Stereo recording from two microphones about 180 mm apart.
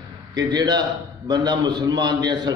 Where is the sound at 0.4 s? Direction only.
20° right (ahead or behind).